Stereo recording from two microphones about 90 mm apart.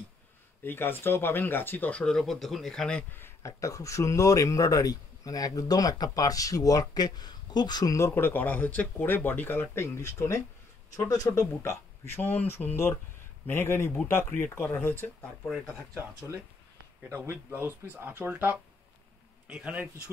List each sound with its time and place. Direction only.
0.7 s speech: 25° left (ahead or behind)
3.1 s speech: 25° left (ahead or behind)
3.4 s speech: 35° left (ahead or behind)
8.1 s speech: 20° left (ahead or behind)
12.2 s speech: 20° left (ahead or behind)
17.3 s a man's voice: 25° right (ahead or behind)